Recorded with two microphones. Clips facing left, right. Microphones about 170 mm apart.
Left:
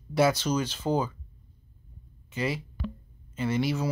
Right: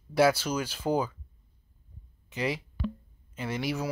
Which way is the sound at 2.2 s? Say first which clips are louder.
Left 1 dB; 15° right (ahead or behind).